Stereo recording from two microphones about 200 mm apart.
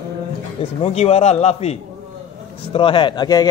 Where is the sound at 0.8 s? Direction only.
30° left (ahead or behind).